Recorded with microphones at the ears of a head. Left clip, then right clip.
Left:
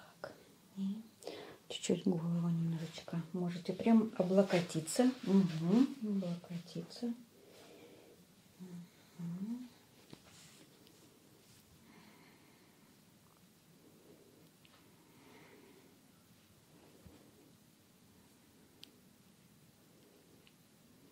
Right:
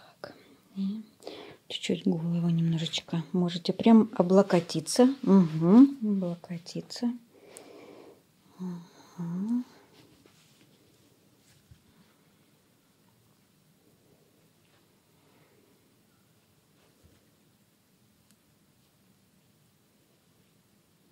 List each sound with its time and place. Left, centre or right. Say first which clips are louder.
0.3 s speech: right 6 dB; right